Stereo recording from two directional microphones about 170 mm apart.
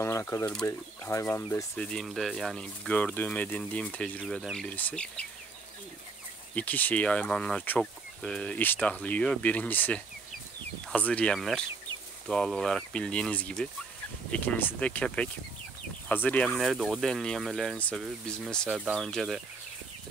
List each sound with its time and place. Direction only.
0.0 s chicken: 15° left (ahead or behind)
0.7 s speech: 15° left (ahead or behind)
1.9 s speech: 5° left (ahead or behind)
6.5 s speech: 10° left (ahead or behind)
18.0 s speech: 5° right (ahead or behind)